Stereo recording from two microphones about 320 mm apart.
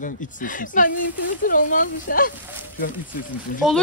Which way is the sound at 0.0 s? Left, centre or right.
Left.